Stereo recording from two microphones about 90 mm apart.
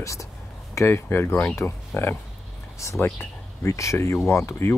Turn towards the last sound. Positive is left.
turn(degrees=30)  # may be behind; listen again after turning